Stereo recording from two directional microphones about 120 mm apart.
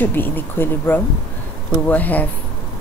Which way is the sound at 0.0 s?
15° left (ahead or behind).